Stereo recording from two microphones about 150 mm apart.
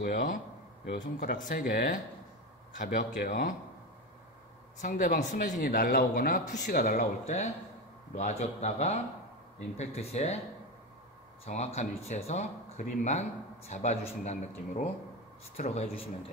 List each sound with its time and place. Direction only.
0.0 s speech: 65° left (ahead or behind)
4.8 s speech: 60° left (ahead or behind)
11.4 s speech: 45° left (ahead or behind)